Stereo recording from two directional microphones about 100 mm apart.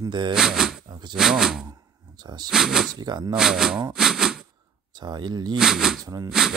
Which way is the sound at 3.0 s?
45° right (ahead or behind).